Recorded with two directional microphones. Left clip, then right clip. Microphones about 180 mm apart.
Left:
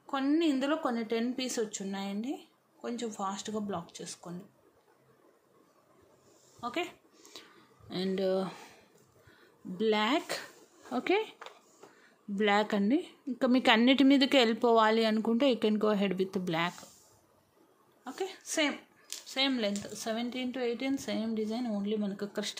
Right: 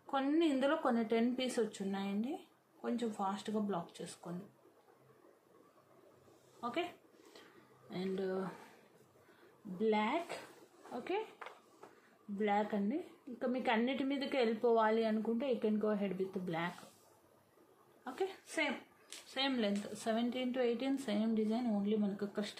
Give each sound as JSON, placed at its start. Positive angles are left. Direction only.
{"t": 0.0, "sound": "speech", "side_deg": 30}
{"t": 6.6, "sound": "speech", "side_deg": 35}
{"t": 7.9, "sound": "a woman's voice", "side_deg": 55}
{"t": 9.8, "sound": "a woman's voice", "side_deg": 60}
{"t": 10.9, "sound": "speech", "side_deg": 80}
{"t": 12.4, "sound": "a woman's voice", "side_deg": 65}
{"t": 18.0, "sound": "speech", "side_deg": 30}